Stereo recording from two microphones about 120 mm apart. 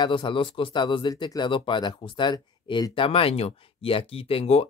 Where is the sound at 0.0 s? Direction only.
40° left (ahead or behind).